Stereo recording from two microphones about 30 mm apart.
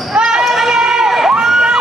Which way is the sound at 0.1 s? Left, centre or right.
Right.